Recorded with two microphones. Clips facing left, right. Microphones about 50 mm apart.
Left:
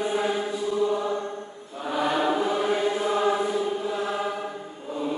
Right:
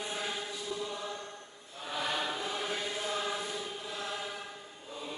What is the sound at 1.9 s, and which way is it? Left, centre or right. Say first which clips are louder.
Choir: left 11 dB; centre.